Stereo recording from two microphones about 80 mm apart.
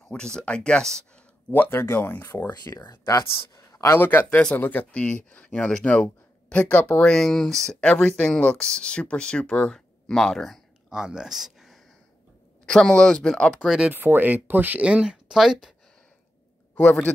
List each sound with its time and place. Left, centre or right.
0.1 s speech: centre
1.5 s speech: left; by 10.6 s centre
10.9 s speech: centre
12.6 s speech: centre
13.7 s speech: centre
13.9 s speech: right; by 15.7 s centre